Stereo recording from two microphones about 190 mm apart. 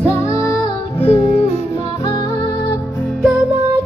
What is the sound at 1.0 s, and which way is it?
Music, 30° left (ahead or behind).